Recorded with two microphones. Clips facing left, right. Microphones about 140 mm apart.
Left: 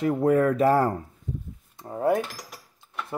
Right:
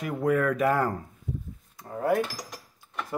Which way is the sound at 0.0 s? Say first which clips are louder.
Left 4 dB; 30° left (ahead or behind).